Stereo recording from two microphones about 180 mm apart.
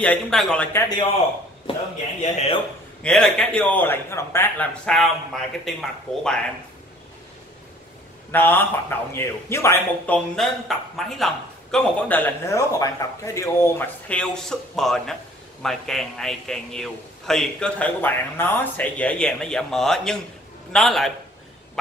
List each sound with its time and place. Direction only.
0.0 s a man's voice: 5° left (ahead or behind)
0.7 s a man's voice: 20° left (ahead or behind)
2.3 s a man's voice: 35° left (ahead or behind)
3.0 s a man's voice: 5° left (ahead or behind)
4.8 s a man's voice: centre (ahead or behind)
8.3 s a man's voice: 10° left (ahead or behind)